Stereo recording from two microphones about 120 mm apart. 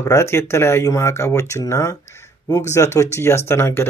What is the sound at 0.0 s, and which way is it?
Speech, 25° left (ahead or behind).